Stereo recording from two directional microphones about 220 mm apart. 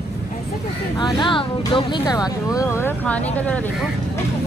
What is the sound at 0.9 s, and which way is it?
Speech, 20° left (ahead or behind).